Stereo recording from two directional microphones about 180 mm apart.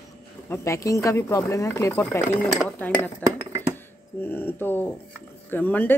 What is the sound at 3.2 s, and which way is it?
Speech, 5° left (ahead or behind).